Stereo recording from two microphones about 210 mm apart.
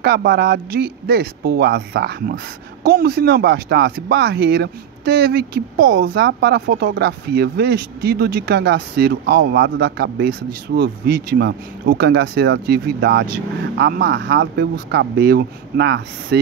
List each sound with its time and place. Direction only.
0.0 s speech: 50° right (ahead or behind)